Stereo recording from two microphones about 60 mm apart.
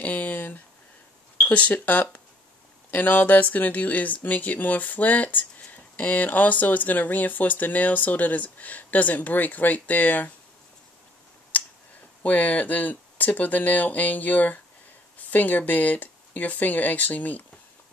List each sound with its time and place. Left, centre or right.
0.0 s a sound: left
1.4 s speech: left
11.5 s tick: left
12.2 s speech: left